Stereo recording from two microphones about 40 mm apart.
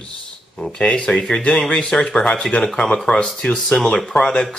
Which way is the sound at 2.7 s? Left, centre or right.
Centre.